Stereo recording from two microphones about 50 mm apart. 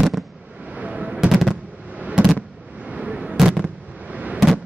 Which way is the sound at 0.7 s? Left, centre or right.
Right.